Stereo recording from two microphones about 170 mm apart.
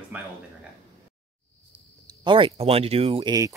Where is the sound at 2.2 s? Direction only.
30° right (ahead or behind).